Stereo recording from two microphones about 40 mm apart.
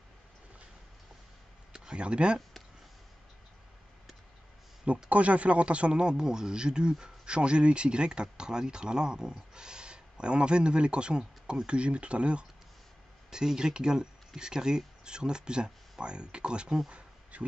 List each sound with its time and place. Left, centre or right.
2.0 s speech: right
5.1 s speech: right
13.3 s speech: centre
16.9 s a sound: right